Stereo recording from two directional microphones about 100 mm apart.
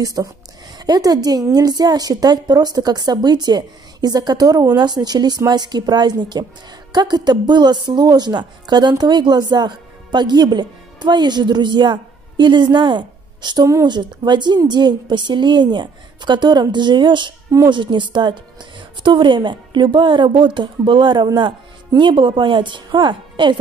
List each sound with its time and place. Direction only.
0.0 s a woman's voice: 35° right (ahead or behind)